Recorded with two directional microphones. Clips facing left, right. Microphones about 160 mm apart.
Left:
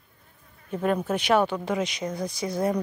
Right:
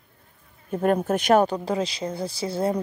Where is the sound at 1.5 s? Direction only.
30° right (ahead or behind).